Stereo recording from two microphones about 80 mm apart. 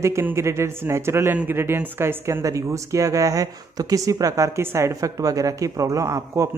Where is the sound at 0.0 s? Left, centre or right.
Right.